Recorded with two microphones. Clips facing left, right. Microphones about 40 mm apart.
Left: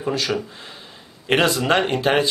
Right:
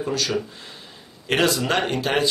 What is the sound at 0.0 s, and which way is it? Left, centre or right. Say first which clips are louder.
Speech: left 1 dB; left.